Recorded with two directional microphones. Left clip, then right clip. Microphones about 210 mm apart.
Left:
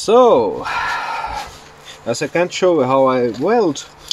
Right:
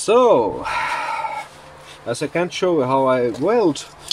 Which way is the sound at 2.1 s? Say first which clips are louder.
Left 4 dB; 45° left (ahead or behind).